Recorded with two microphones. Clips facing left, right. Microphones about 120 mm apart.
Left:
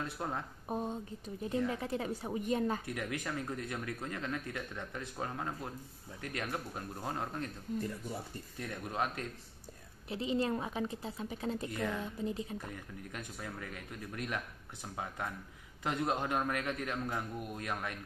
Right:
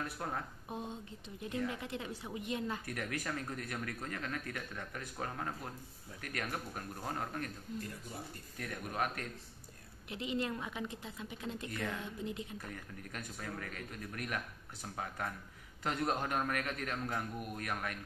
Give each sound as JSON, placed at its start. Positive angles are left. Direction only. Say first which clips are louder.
{"t": 0.0, "sound": "speech", "louder": "left 2 dB", "side_deg": 15}
{"t": 0.7, "sound": "a woman's voice", "louder": "left 6 dB", "side_deg": 40}
{"t": 2.9, "sound": "speech", "louder": "left 1 dB", "side_deg": 20}
{"t": 8.5, "sound": "a woman's voice", "louder": "left 1 dB", "side_deg": 25}
{"t": 12.6, "sound": "speech", "louder": "left 2 dB", "side_deg": 15}